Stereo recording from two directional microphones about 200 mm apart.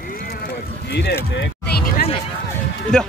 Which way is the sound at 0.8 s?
55° left (ahead or behind).